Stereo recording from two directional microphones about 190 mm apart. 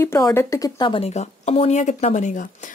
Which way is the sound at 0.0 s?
15° left (ahead or behind).